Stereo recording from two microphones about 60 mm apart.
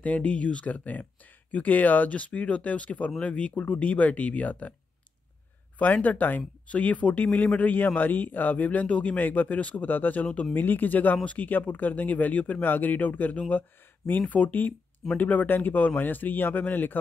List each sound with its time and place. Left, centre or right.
0.0 s a man's voice: left
5.8 s a man's voice: left
10.2 s a man's voice: centre
10.5 s a man's voice: left